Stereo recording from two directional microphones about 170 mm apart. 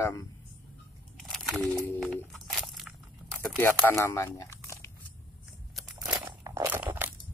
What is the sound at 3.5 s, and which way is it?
Speech, 15° left (ahead or behind).